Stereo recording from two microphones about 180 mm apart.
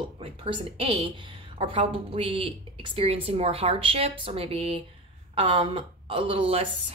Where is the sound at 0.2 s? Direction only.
30° right (ahead or behind).